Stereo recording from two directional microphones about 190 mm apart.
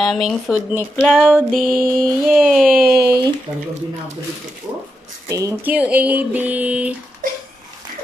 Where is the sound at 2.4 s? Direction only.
Centre (ahead or behind).